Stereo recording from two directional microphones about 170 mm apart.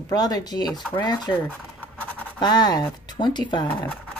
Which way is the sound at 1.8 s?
10° left (ahead or behind).